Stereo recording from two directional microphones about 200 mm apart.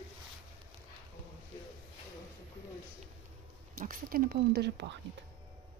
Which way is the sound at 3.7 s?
45° right (ahead or behind).